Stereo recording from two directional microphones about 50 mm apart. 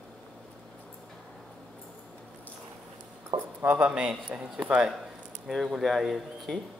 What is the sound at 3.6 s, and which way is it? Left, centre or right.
Speech, right.